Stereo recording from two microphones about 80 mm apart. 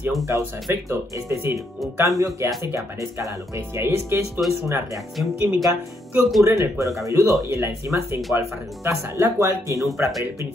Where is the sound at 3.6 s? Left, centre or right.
Right.